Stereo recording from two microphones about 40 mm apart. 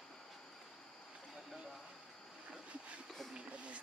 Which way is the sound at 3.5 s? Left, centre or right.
Right.